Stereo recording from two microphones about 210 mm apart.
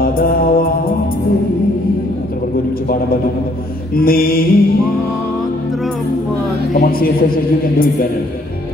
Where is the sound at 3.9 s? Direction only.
45° left (ahead or behind).